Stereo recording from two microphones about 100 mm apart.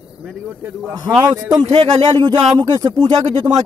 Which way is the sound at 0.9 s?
40° right (ahead or behind).